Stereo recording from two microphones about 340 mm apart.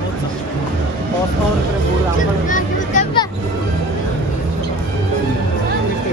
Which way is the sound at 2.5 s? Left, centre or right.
Left.